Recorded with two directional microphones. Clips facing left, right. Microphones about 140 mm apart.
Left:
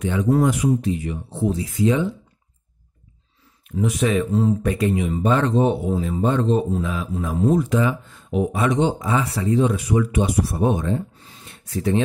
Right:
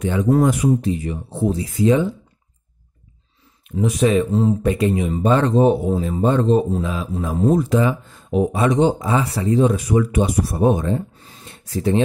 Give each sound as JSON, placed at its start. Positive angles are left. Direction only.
{"t": 0.0, "sound": "speech", "side_deg": -35}
{"t": 0.7, "sound": "speech", "side_deg": -35}
{"t": 3.8, "sound": "speech", "side_deg": -30}